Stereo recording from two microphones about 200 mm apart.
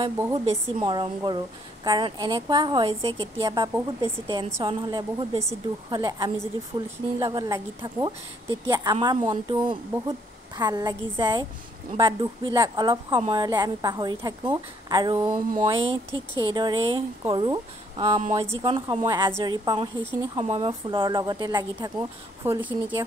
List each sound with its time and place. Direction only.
0.5 s a woman's voice: 25° right (ahead or behind)